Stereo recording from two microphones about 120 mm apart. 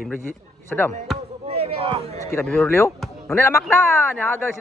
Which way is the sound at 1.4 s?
60° right (ahead or behind).